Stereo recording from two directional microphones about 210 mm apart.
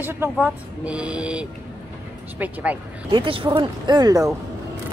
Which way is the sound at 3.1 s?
25° right (ahead or behind).